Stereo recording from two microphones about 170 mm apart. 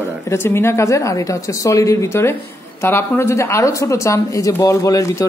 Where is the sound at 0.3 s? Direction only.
15° left (ahead or behind).